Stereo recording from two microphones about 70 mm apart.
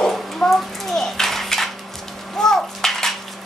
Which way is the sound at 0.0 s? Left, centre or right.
Centre.